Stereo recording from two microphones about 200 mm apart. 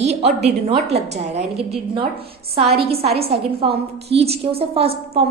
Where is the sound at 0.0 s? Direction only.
35° right (ahead or behind).